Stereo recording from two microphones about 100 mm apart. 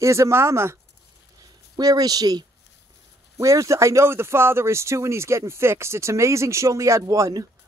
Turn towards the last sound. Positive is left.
turn(degrees=-35)  # may be behind; listen again after turning